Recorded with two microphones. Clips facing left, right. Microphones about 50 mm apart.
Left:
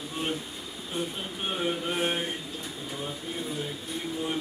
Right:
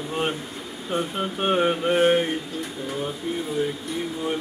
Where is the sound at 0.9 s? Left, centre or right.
Right.